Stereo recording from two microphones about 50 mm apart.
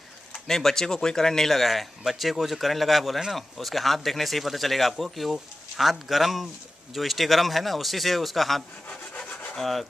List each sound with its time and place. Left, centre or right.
0.5 s speech: centre
8.8 s rub: left
9.6 s speech: centre